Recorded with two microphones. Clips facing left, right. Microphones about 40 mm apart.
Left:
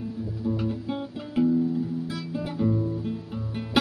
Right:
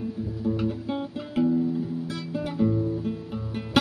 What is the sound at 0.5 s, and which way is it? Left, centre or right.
Music, centre.